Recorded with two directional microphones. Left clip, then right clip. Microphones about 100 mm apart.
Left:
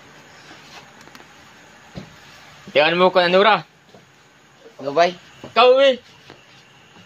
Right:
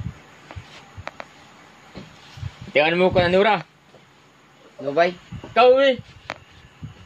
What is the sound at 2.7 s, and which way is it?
Speech, 35° right (ahead or behind).